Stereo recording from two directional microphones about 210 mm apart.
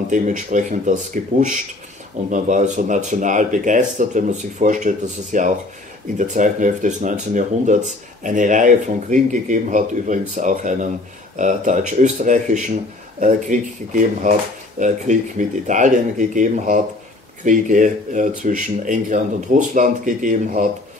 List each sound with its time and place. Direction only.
0.1 s speech: 35° right (ahead or behind)